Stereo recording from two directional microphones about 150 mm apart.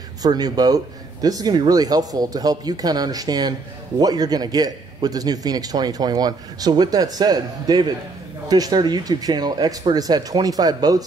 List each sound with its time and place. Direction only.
0.2 s a man's voice: 25° right (ahead or behind)